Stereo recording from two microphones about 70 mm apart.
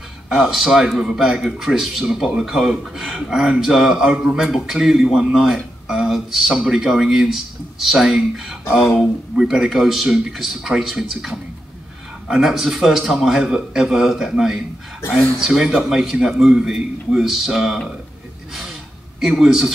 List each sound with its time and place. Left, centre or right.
0.3 s a man's voice: centre
8.6 s speech: left
9.4 s a man's voice: centre
18.5 s gasp: centre